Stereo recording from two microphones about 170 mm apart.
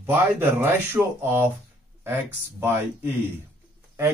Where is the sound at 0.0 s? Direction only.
10° right (ahead or behind).